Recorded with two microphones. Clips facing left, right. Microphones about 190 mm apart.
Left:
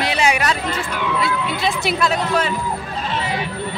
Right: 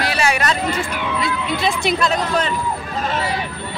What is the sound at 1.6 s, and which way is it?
Speech, 5° left (ahead or behind).